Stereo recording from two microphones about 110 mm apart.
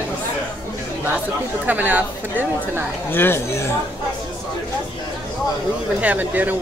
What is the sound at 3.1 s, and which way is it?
Speech, 20° left (ahead or behind).